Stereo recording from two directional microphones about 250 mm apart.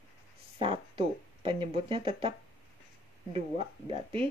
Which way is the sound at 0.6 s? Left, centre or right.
Centre.